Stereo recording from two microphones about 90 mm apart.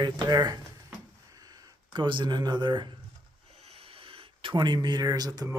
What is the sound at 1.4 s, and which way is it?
Speech, 60° right (ahead or behind).